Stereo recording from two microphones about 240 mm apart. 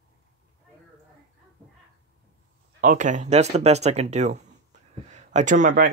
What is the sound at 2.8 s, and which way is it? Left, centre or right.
Speech, right.